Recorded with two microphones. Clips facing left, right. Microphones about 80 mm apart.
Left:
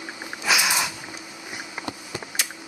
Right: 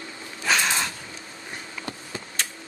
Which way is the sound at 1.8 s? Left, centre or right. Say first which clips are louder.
Left 2 dB; centre.